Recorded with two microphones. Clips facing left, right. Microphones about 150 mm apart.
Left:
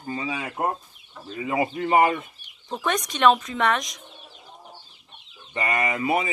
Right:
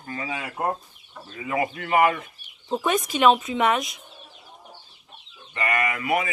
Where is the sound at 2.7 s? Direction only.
5° right (ahead or behind).